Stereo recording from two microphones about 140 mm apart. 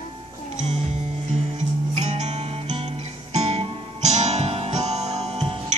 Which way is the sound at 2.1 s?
55° right (ahead or behind).